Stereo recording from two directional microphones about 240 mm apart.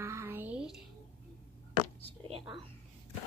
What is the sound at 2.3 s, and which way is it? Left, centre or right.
Speech, right.